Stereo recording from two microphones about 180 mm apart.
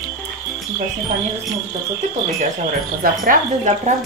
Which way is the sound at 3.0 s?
45° right (ahead or behind).